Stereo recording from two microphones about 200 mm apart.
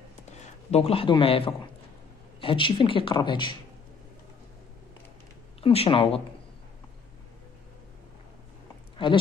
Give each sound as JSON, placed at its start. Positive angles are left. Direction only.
{"t": 0.7, "sound": "speech", "side_deg": 30}
{"t": 5.6, "sound": "speech", "side_deg": 30}
{"t": 8.9, "sound": "a sound", "side_deg": 25}